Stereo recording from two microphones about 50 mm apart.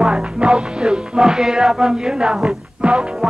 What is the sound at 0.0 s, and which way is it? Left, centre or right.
Music, centre.